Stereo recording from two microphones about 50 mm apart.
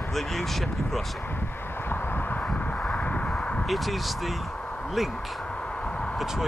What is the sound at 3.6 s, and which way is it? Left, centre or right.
Speech, centre.